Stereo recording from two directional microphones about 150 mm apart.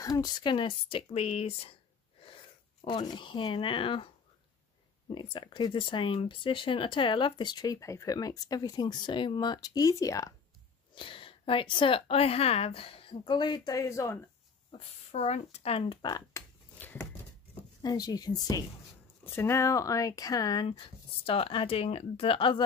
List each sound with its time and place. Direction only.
0.0 s speech: 25° left (ahead or behind)
2.8 s speech: 30° left (ahead or behind)
5.1 s speech: 35° left (ahead or behind)
11.0 s speech: 35° left (ahead or behind); by 14.2 s 20° left (ahead or behind)
14.7 s speech: 45° left (ahead or behind); by 16.4 s 30° left (ahead or behind)
16.7 s a sound: 10° left (ahead or behind)
17.8 s speech: 25° left (ahead or behind)
21.3 s speech: 35° left (ahead or behind)